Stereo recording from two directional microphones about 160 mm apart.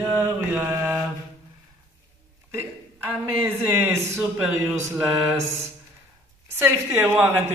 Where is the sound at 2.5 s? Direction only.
15° right (ahead or behind).